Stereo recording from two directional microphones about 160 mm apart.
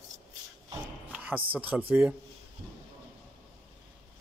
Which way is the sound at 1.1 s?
10° right (ahead or behind).